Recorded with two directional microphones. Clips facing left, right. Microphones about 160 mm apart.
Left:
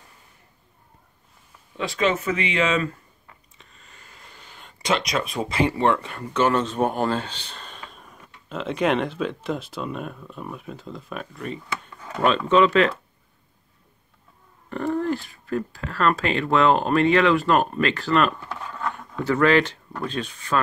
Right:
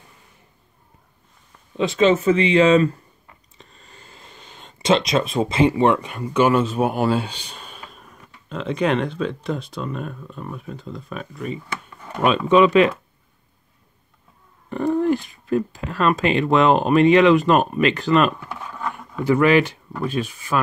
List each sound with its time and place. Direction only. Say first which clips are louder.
1.8 s speech: right 6 dB; 25° right (ahead or behind)
14.7 s speech: right 5 dB; 15° right (ahead or behind)